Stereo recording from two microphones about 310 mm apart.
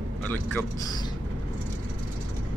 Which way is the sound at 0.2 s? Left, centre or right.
Centre.